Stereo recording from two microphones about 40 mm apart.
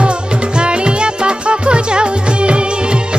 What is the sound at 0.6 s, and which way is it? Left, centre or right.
Music, right.